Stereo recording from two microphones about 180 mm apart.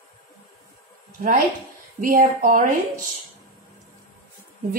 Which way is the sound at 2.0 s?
50° right (ahead or behind).